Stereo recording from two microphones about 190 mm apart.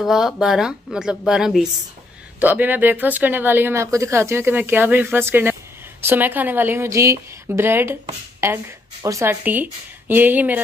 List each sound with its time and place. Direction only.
0.0 s a woman's voice: centre (ahead or behind)